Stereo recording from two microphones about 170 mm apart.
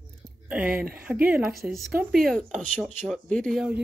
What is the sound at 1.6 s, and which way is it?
Speech, 20° right (ahead or behind).